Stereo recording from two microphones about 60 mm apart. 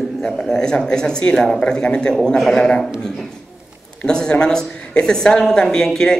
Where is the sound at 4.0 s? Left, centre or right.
Centre.